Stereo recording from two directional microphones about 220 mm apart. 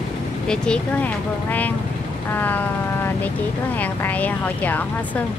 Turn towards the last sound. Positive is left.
turn(degrees=5)  # may be behind; listen again after turning